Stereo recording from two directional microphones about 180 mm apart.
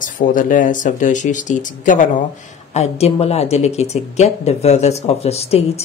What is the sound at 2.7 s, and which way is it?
Speech, 35° left (ahead or behind).